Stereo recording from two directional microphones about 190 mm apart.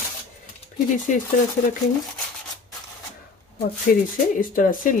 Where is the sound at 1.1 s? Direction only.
40° left (ahead or behind).